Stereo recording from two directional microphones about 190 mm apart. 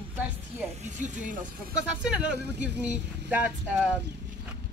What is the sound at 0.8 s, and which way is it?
Speech, 40° right (ahead or behind).